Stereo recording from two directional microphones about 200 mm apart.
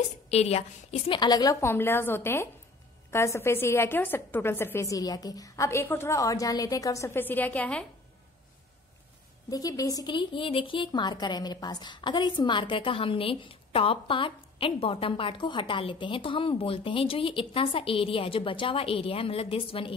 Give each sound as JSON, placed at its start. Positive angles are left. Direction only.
{"t": 0.3, "sound": "a woman's voice", "side_deg": 30}
{"t": 9.5, "sound": "speech", "side_deg": 20}